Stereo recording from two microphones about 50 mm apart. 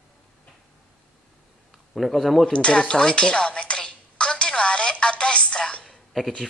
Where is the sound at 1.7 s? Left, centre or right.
Centre.